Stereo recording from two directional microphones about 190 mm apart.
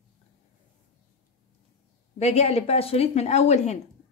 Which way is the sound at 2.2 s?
35° left (ahead or behind).